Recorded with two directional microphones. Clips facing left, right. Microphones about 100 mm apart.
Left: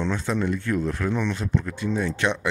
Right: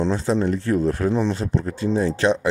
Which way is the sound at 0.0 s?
35° right (ahead or behind).